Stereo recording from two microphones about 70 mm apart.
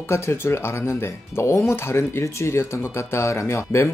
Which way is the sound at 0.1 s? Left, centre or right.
Left.